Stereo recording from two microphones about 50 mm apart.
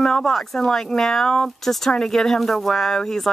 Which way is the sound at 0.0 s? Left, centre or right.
Centre.